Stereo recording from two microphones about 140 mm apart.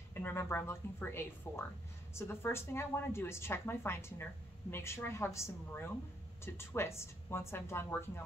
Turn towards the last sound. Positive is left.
turn(degrees=15)  # may be behind; listen again after turning